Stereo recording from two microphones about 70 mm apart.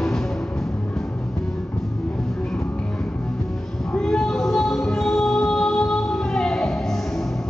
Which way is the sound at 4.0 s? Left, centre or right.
Centre.